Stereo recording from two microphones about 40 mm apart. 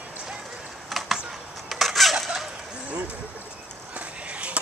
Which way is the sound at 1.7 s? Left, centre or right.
Centre.